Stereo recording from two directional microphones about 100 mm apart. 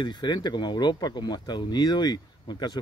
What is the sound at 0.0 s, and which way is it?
Speech, 45° left (ahead or behind).